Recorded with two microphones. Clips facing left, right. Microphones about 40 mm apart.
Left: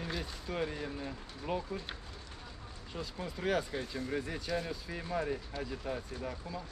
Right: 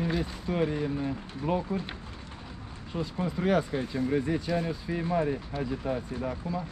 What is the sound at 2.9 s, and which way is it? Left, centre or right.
Speech, centre.